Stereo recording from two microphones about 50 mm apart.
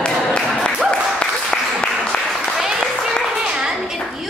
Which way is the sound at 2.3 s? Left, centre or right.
Centre.